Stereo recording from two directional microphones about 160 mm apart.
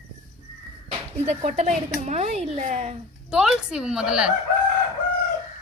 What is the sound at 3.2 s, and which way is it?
A woman's voice, 5° right (ahead or behind).